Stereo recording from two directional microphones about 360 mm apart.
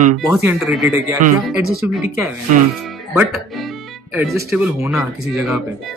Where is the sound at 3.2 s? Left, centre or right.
Centre.